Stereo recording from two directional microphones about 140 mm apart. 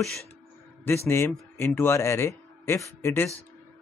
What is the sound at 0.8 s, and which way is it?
Speech, 15° left (ahead or behind).